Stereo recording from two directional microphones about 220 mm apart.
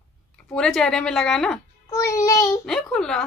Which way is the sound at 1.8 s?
15° left (ahead or behind).